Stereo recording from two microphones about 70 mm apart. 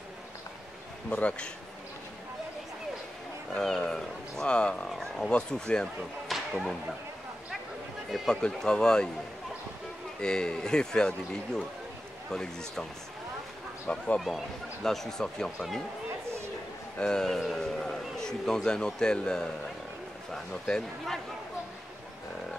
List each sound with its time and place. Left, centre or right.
1.1 s a man's voice: centre
3.5 s a man's voice: centre
4.8 s a man's voice: centre
6.2 s whip: centre
8.1 s a man's voice: centre
10.2 s a man's voice: centre
13.8 s a man's voice: centre
14.2 s speech: centre
17.0 s a man's voice: centre